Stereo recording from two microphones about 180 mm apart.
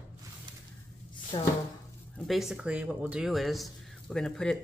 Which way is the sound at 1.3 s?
30° left (ahead or behind).